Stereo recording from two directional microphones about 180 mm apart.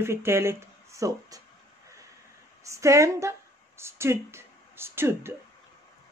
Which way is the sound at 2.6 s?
15° right (ahead or behind).